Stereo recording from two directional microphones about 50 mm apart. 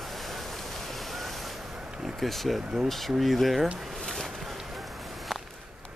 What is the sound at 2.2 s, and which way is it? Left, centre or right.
Speech, centre.